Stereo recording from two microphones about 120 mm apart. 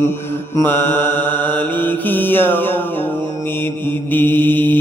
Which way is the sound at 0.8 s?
20° left (ahead or behind).